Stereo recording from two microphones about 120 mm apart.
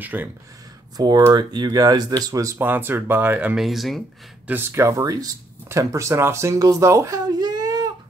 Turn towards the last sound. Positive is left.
turn(degrees=-35)  # may be behind; listen again after turning